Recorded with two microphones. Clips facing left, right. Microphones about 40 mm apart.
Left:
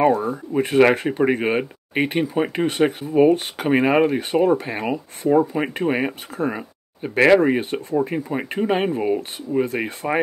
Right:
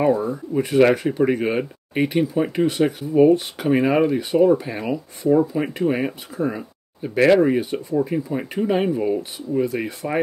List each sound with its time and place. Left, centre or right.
0.1 s speech: left
0.5 s speech: left